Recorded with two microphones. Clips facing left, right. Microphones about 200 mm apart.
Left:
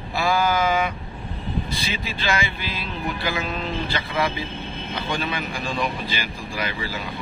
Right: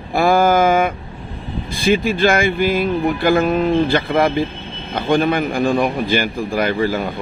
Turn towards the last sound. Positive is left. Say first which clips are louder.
# right 11 dB
turn(degrees=-55)  # may be behind; listen again after turning